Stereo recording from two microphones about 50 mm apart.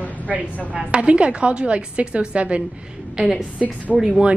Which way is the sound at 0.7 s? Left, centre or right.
Right.